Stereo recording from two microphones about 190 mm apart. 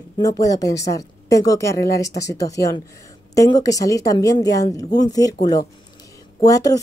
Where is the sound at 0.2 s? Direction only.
20° left (ahead or behind).